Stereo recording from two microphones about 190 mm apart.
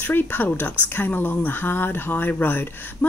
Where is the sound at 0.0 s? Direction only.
10° left (ahead or behind).